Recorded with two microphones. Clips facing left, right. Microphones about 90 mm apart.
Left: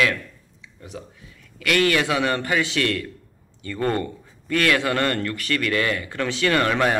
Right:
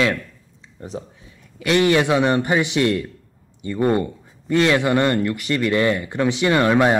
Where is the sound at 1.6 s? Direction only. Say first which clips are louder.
Right 4 dB; 20° right (ahead or behind).